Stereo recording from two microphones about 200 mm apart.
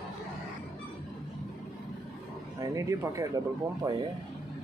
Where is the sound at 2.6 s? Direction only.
15° right (ahead or behind).